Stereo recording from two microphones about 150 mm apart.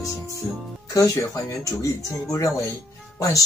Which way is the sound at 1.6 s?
20° left (ahead or behind).